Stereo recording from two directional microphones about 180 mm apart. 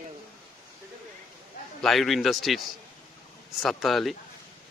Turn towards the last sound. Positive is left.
turn(degrees=0)  # may be behind; listen again after turning